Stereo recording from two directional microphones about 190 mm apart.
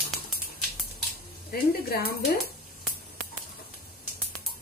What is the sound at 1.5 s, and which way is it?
Speech, 55° left (ahead or behind).